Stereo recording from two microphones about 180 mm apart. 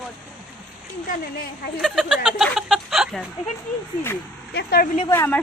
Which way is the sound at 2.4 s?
Centre (ahead or behind).